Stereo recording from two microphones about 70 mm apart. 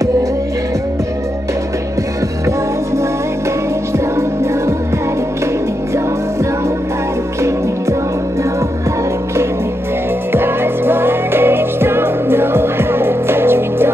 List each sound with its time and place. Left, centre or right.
10.3 s music: right